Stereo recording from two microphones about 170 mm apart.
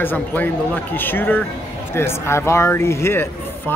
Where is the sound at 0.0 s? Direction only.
10° left (ahead or behind).